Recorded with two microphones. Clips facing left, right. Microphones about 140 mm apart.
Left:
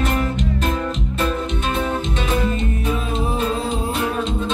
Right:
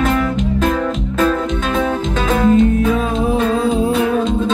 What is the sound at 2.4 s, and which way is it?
Music, 90° right.